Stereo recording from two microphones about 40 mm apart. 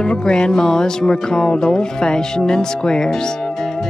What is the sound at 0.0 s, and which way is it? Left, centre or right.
A man's voice, left.